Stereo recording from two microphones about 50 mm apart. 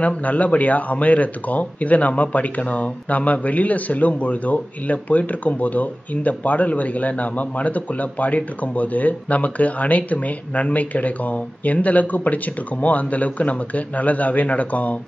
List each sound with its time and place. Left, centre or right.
0.0 s speech: left